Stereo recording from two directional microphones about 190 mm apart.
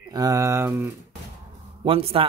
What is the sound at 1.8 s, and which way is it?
Speech, 30° right (ahead or behind).